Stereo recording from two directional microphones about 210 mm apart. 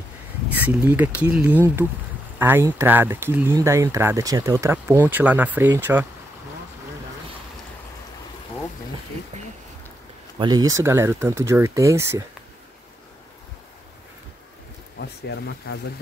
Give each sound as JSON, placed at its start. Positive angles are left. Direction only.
{"t": 0.5, "sound": "speech", "side_deg": -10}
{"t": 10.4, "sound": "speech", "side_deg": -20}
{"t": 15.0, "sound": "a sound", "side_deg": 55}